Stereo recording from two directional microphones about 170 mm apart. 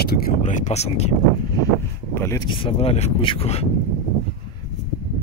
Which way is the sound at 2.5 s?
30° left (ahead or behind).